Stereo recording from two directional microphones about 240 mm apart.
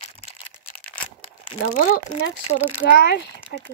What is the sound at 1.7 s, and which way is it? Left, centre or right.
Speech, left.